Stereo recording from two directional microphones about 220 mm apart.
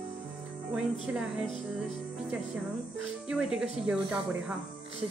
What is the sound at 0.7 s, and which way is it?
Speech, 5° right (ahead or behind).